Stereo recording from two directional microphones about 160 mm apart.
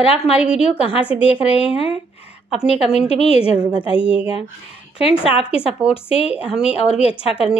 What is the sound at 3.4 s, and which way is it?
Speech, 5° right (ahead or behind).